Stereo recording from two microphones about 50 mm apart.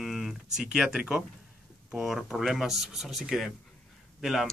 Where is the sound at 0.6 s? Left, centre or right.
Centre.